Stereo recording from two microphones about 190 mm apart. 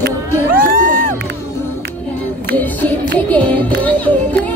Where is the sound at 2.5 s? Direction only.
10° left (ahead or behind).